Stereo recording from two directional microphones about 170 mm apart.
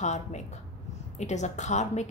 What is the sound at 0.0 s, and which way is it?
A woman's voice, 45° left (ahead or behind).